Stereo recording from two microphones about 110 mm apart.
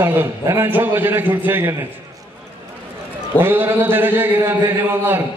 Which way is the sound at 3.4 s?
20° right (ahead or behind).